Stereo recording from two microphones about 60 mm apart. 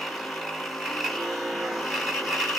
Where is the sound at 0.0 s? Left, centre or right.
Centre.